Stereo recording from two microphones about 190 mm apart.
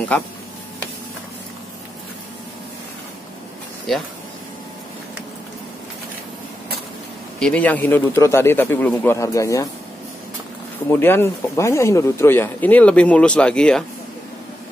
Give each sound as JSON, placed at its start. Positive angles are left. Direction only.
{"t": 7.3, "sound": "speech", "side_deg": 5}
{"t": 10.9, "sound": "speech", "side_deg": 10}